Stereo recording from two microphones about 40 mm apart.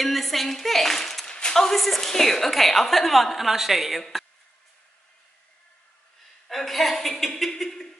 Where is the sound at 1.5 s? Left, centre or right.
Centre.